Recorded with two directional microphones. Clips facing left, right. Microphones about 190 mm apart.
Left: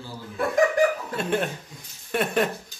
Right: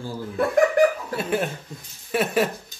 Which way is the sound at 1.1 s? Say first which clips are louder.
Right 1 dB; 5° right (ahead or behind).